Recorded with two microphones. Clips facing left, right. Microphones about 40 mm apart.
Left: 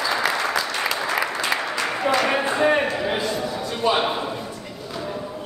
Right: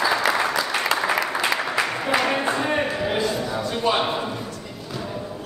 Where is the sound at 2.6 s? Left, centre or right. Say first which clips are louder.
Left 4 dB; centre.